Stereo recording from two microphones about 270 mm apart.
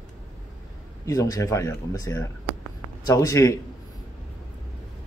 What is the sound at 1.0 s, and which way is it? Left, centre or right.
Speech, centre.